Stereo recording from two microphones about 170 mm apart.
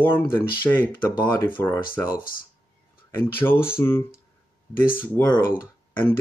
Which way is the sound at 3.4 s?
15° left (ahead or behind).